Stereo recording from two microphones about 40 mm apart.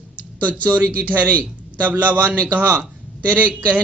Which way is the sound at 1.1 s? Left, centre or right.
Right.